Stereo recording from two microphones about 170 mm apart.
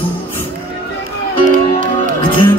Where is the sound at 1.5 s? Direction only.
50° right (ahead or behind).